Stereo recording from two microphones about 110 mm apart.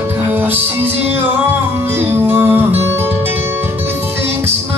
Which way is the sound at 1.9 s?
20° right (ahead or behind).